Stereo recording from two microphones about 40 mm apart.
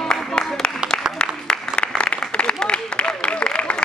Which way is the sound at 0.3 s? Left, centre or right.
Left.